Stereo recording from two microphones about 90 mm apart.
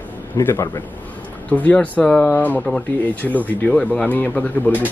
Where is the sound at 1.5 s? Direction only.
15° left (ahead or behind).